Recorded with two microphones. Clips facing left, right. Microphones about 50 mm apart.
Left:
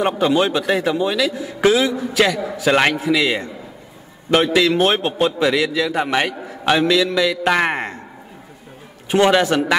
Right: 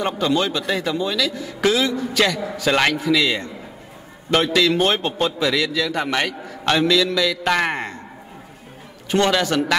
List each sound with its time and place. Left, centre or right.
0.0 s a man's voice: centre
9.1 s a man's voice: centre